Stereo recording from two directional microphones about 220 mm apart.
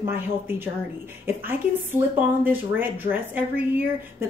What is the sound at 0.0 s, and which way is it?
A woman's voice, 10° right (ahead or behind).